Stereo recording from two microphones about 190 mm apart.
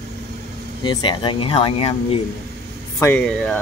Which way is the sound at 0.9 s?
25° left (ahead or behind).